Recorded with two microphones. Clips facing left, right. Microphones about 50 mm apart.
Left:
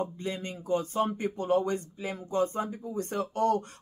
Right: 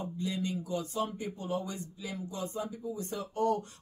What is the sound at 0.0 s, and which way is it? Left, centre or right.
Speech, left.